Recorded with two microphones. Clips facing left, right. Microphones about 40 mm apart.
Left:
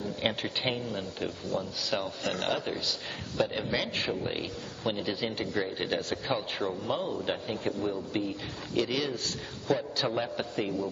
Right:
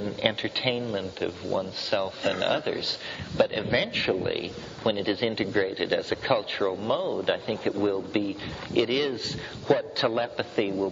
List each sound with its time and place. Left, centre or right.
0.2 s speech: right